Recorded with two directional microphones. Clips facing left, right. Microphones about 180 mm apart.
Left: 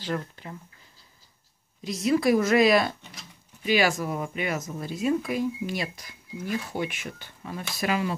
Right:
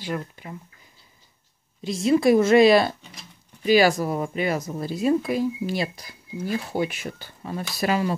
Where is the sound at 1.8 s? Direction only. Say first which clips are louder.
Right 4 dB; 25° right (ahead or behind).